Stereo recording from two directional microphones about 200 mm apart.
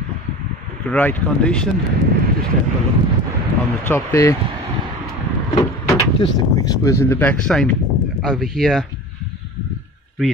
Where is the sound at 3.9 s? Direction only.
15° left (ahead or behind).